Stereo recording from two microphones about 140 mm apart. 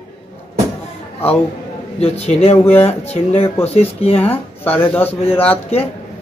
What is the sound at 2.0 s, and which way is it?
Speech, 45° left (ahead or behind).